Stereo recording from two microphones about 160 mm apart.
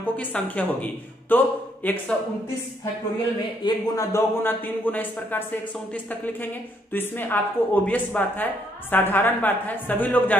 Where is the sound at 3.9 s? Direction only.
15° left (ahead or behind).